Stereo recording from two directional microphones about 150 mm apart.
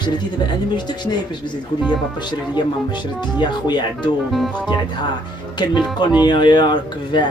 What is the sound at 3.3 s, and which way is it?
Speech, 30° left (ahead or behind).